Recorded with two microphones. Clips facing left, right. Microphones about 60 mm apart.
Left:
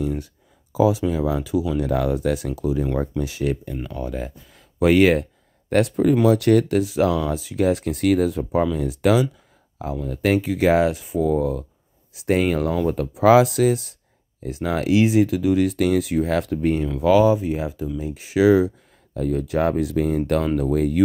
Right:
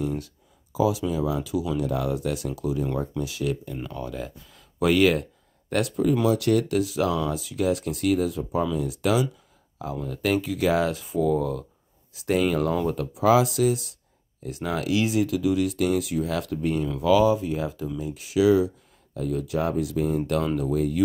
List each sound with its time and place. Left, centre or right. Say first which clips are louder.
0.7 s speech: left 4 dB; left
3.7 s speech: left 3 dB; centre
4.0 s speech: left 4 dB; left
6.2 s speech: left 5 dB; left
6.8 s speech: left 4 dB; left
8.0 s speech: left 5 dB; left
10.9 s speech: left 2 dB; centre
12.3 s speech: left 3 dB; left
13.2 s speech: left 5 dB; left
14.4 s speech: left 5 dB; left
17.4 s speech: left 3 dB; left
18.0 s speech: left 3 dB; left